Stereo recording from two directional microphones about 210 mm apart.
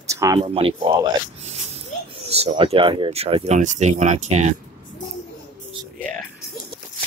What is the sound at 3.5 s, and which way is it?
Speech, 35° right (ahead or behind).